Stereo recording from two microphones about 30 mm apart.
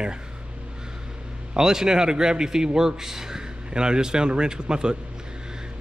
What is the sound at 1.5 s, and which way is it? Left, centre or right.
A man's voice, right.